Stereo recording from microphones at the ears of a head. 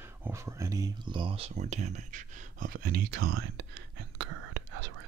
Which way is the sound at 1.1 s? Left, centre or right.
Right.